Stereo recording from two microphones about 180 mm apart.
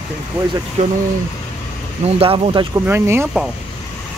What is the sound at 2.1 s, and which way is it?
Speech, 35° right (ahead or behind).